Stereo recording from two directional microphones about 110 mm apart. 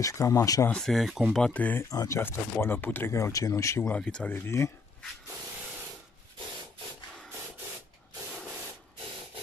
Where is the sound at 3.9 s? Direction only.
10° left (ahead or behind).